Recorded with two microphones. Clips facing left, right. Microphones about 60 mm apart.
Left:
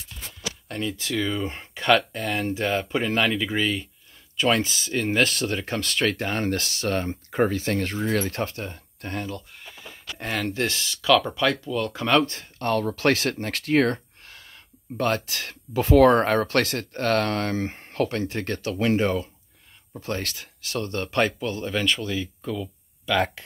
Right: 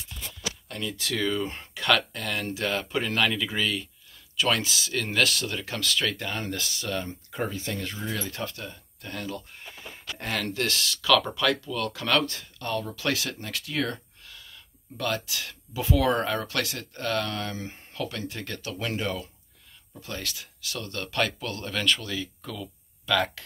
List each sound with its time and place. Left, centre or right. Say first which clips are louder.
0.7 s speech: left 4 dB; left
5.6 s speech: left 3 dB; left
10.1 s speech: left 3 dB; centre; by 12.4 s left
12.4 s speech: left 6 dB; left
21.4 s speech: left 5 dB; centre